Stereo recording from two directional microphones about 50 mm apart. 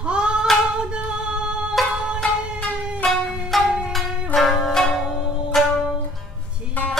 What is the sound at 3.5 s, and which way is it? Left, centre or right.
Music, centre.